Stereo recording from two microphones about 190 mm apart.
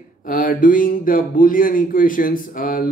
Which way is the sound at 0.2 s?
45° left (ahead or behind).